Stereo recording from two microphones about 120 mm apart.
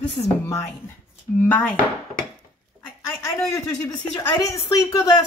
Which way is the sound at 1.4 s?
15° left (ahead or behind).